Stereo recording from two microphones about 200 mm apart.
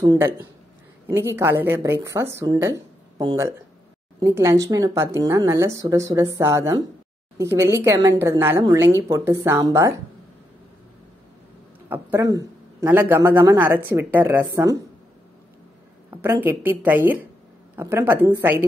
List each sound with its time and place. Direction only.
0.0 s a man's voice: 15° right (ahead or behind)
11.9 s a man's voice: 15° right (ahead or behind)
16.1 s a man's voice: 10° right (ahead or behind)